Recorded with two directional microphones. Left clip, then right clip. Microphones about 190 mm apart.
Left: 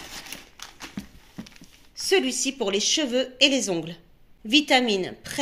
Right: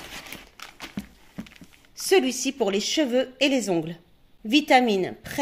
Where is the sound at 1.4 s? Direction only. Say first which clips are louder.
Even; 60° right (ahead or behind).